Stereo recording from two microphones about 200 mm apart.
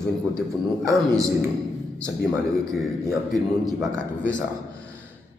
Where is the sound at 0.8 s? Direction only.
15° right (ahead or behind).